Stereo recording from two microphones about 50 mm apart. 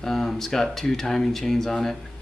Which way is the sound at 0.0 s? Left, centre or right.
Centre.